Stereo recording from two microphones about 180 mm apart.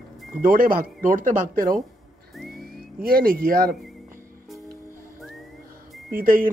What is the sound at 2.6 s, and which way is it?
Speech, 55° right (ahead or behind).